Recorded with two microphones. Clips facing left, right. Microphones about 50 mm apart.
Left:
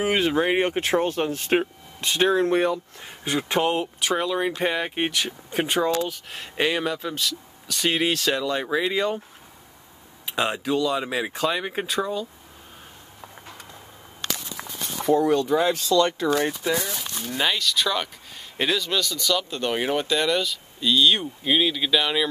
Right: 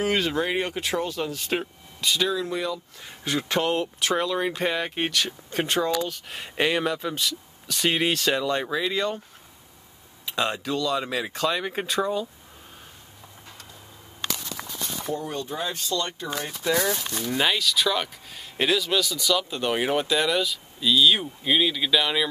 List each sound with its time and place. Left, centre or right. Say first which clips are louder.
0.0 s speech: left 3 dB; centre; by 2.8 s left
3.0 s speech: left 1 dB; centre
6.0 s speech: left 1 dB; centre
8.6 s speech: left 2 dB; centre
10.2 s speech: left 2 dB; centre
14.6 s walk: left 1 dB; centre
15.0 s speech: left 11 dB; left
16.6 s speech: right 4 dB; centre
17.2 s speech: even; centre